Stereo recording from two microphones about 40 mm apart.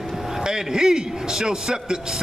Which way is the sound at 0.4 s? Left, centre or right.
Centre.